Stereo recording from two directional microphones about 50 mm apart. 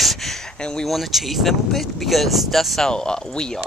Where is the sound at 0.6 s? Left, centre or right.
Centre.